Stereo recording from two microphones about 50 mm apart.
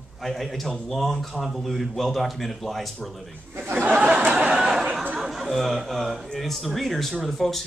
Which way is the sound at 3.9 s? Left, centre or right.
Right.